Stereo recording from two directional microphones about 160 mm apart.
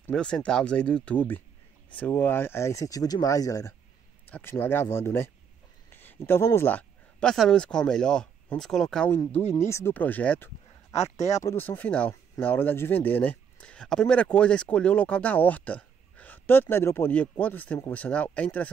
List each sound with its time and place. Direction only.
0.1 s speech: 5° left (ahead or behind)
10.9 s speech: 45° left (ahead or behind)
11.3 s speech: 15° left (ahead or behind)